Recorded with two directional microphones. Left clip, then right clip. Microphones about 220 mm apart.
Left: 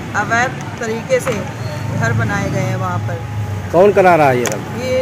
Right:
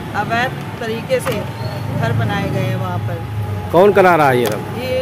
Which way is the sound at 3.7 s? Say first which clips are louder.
Left 1 dB; 15° right (ahead or behind).